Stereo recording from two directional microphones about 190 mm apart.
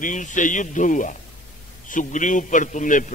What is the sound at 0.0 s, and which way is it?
A man's voice, 40° left (ahead or behind).